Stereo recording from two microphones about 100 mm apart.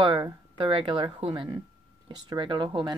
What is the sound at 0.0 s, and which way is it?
Speech, 55° right (ahead or behind).